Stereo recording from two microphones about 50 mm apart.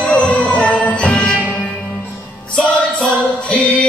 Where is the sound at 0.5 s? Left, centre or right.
Left.